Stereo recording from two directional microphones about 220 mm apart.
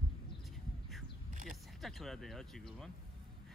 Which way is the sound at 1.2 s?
40° right (ahead or behind).